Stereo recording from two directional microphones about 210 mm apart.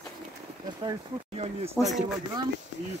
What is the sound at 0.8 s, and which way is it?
Speech, 25° right (ahead or behind).